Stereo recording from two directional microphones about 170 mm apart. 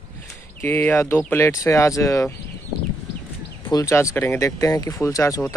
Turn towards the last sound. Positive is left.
turn(degrees=20)  # may be behind; listen again after turning